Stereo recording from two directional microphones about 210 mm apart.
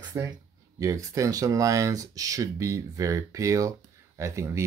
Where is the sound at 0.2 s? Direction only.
10° right (ahead or behind).